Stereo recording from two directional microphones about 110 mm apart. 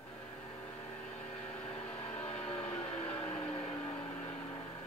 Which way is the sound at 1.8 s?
15° left (ahead or behind).